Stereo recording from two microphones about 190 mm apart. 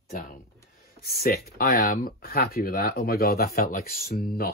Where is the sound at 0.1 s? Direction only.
45° left (ahead or behind).